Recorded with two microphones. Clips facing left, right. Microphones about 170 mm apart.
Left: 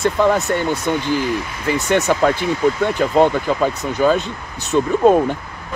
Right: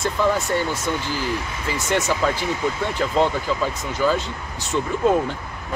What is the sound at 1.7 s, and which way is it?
Speech, 65° left (ahead or behind).